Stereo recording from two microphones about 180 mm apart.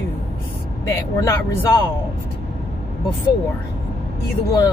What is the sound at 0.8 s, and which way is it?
Speech, 15° left (ahead or behind).